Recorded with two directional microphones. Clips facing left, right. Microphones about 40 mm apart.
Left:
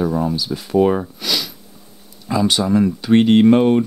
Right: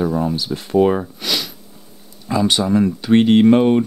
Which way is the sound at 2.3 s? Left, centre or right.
Centre.